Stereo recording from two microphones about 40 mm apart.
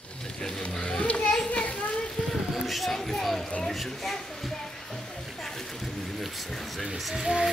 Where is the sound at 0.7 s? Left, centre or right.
Left.